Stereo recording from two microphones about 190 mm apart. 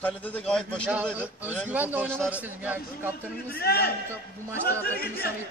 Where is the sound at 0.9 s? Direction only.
10° right (ahead or behind).